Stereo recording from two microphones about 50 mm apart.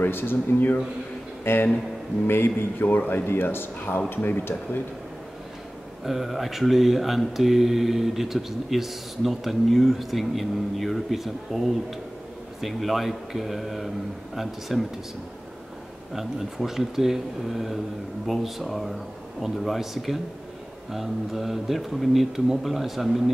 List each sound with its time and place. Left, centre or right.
0.0 s a man's voice: left
6.0 s speech: centre
16.1 s speech: centre